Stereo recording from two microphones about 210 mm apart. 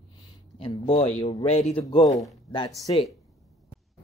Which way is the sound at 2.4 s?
20° left (ahead or behind).